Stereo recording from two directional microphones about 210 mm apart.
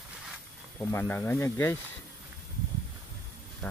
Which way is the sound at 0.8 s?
10° left (ahead or behind).